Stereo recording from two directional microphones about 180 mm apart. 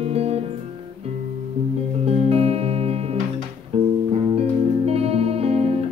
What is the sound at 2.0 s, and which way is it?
Music, 35° right (ahead or behind).